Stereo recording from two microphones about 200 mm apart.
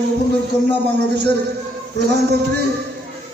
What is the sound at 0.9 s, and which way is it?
Speech, 55° right (ahead or behind).